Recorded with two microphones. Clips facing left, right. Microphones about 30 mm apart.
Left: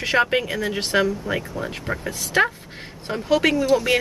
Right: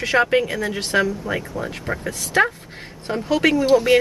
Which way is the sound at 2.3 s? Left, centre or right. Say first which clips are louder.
Right 1 dB; centre.